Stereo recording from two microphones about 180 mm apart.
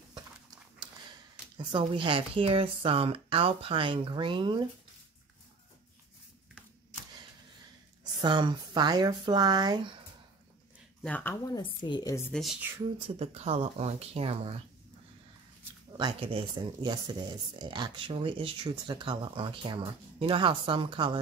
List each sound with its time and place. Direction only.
1.6 s speech: 30° right (ahead or behind)
8.0 s speech: 25° right (ahead or behind)
11.0 s speech: 10° left (ahead or behind)
11.5 s a woman's voice: 25° left (ahead or behind)
12.3 s speech: centre (ahead or behind)
13.2 s speech: 35° right (ahead or behind)
16.0 s speech: 25° right (ahead or behind)